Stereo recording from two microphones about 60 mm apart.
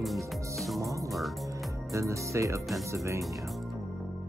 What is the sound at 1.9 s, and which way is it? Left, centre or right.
Speech, right.